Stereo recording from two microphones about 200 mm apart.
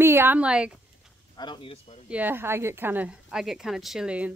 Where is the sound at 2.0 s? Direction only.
10° right (ahead or behind).